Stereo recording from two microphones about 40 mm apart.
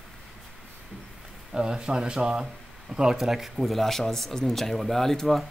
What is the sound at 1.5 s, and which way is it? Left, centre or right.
Speech, centre.